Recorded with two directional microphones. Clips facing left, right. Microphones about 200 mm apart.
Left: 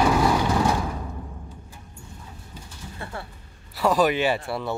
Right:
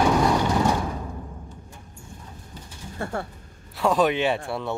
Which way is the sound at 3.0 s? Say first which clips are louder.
Right 7 dB; 50° right (ahead or behind).